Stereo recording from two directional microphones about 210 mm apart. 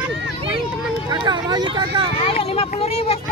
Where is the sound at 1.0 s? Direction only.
20° right (ahead or behind).